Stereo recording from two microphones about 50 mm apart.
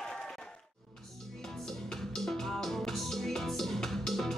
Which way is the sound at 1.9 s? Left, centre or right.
Centre.